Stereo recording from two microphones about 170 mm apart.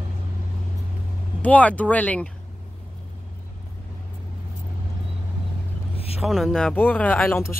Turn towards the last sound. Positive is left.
turn(degrees=10)  # may be behind; listen again after turning